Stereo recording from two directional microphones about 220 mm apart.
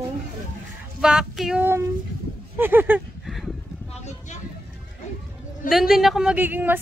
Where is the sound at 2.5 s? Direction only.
10° right (ahead or behind).